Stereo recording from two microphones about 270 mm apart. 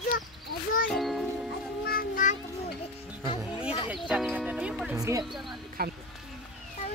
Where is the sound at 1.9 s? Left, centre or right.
Left.